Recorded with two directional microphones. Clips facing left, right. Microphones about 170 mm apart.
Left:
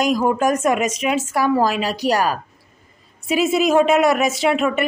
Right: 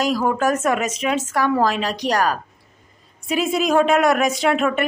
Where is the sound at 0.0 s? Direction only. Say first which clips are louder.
Left 2 dB; 15° left (ahead or behind).